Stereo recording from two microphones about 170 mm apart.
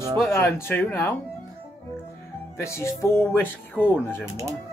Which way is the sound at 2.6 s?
15° left (ahead or behind).